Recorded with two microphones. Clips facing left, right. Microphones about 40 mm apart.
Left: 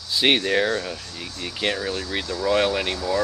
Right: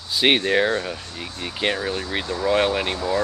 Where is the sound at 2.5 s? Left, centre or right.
Centre.